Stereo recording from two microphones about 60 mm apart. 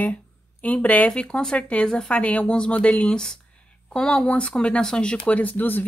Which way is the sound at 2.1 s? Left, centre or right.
Left.